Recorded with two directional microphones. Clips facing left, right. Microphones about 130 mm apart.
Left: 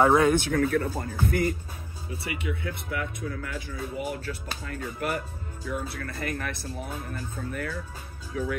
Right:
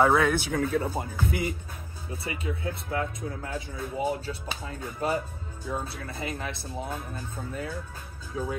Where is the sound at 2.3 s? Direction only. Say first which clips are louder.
Even; 30° right (ahead or behind).